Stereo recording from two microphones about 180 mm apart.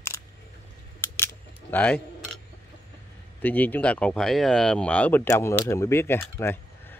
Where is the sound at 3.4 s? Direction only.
10° left (ahead or behind).